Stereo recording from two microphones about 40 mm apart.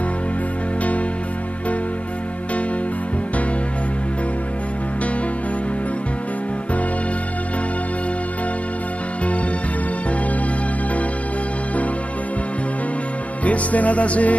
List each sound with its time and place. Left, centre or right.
13.4 s music: left